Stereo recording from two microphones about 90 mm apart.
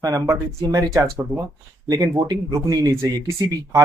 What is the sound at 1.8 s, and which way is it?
Speech, 45° right (ahead or behind).